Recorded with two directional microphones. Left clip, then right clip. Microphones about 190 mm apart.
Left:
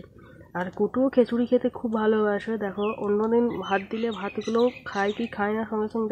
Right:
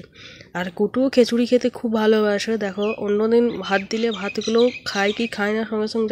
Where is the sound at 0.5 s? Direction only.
20° right (ahead or behind).